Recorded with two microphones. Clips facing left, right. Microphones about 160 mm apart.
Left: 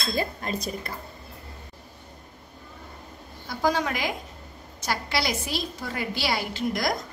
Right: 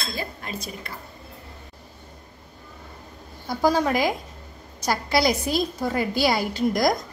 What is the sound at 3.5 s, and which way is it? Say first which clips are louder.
A woman's voice: right 4 dB; 40° right (ahead or behind).